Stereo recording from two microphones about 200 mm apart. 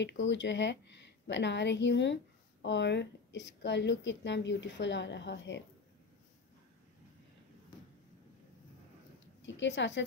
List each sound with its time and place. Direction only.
0.0 s a woman's voice: 65° left (ahead or behind)
9.4 s a woman's voice: 65° left (ahead or behind)